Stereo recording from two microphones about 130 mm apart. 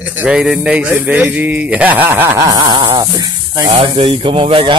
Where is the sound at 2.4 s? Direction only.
30° right (ahead or behind).